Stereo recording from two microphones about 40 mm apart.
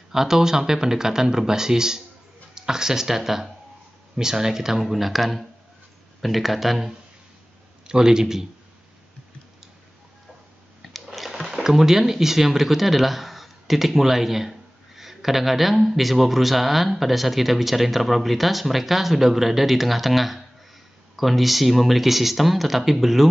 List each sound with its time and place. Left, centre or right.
0.1 s speech: centre
7.8 s speech: centre
11.1 s a sound: centre
11.5 s speech: centre